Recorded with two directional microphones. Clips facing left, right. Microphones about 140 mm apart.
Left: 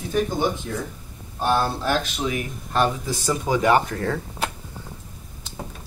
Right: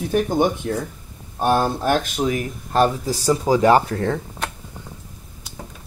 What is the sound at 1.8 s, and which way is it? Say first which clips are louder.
Speech: right 4 dB; 50° right (ahead or behind).